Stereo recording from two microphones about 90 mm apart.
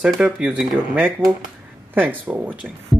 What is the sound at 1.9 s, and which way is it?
Speech, 20° right (ahead or behind).